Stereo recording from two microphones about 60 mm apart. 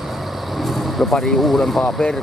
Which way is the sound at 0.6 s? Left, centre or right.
Centre.